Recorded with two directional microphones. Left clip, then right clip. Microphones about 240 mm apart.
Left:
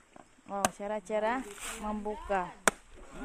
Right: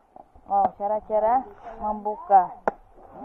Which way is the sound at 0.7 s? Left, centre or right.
Left.